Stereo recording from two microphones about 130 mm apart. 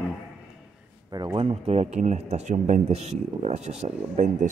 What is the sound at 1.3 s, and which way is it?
Speech, 45° right (ahead or behind).